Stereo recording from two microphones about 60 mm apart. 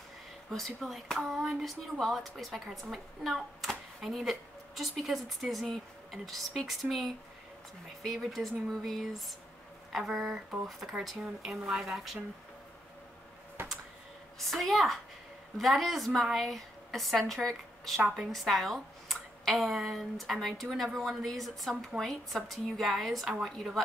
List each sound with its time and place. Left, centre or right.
0.5 s a woman's voice: centre
9.9 s speech: centre
13.6 s a sound: right
14.4 s a woman's voice: centre